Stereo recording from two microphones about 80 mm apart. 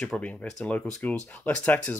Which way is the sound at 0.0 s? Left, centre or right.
Centre.